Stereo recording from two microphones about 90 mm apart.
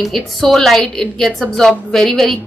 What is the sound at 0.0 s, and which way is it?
A woman's voice, centre (ahead or behind).